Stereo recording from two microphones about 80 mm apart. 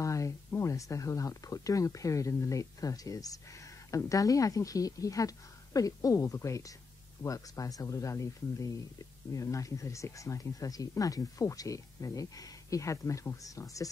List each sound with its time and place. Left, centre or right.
0.0 s speech: left